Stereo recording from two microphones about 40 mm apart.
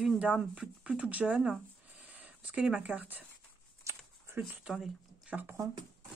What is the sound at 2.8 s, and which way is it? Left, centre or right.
Speech, right.